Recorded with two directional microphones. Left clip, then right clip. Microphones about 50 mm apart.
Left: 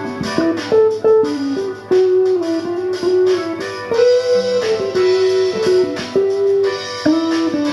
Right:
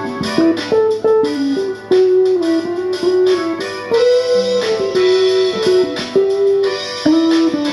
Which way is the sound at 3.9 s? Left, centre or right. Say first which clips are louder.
Right 1 dB; right.